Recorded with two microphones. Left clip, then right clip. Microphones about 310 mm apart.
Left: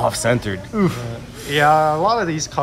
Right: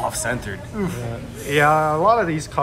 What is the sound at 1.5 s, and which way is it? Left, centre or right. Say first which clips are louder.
Speech: left 2 dB; centre.